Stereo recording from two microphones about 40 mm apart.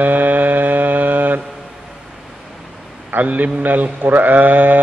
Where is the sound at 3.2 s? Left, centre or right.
Right.